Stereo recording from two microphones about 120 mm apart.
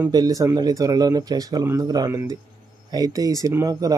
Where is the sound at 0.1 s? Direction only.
30° right (ahead or behind).